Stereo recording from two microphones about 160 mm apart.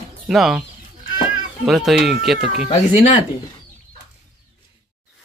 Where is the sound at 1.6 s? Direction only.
Centre (ahead or behind).